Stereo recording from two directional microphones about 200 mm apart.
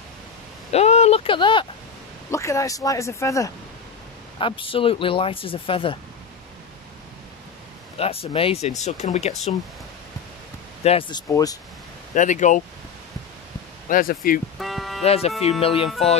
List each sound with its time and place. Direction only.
0.7 s a sound: 30° left (ahead or behind)
2.3 s speech: 15° left (ahead or behind)
4.4 s speech: 25° left (ahead or behind)
8.0 s speech: 30° left (ahead or behind)
10.8 s speech: 30° left (ahead or behind)
12.1 s speech: 40° left (ahead or behind)
13.8 s speech: 45° left (ahead or behind)
14.6 s toot: centre (ahead or behind)
15.0 s speech: 30° left (ahead or behind)